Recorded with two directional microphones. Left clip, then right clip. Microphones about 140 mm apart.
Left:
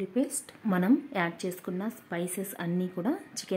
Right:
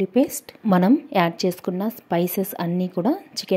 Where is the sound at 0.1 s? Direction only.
45° right (ahead or behind).